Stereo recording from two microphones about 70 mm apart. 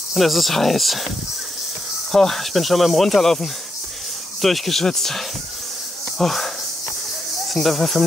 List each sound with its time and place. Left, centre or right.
0.1 s speech: centre
2.1 s speech: centre